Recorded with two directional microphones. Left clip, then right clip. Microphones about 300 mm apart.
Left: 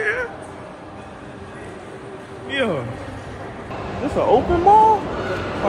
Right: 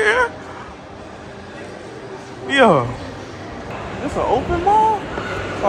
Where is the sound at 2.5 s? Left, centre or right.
Right.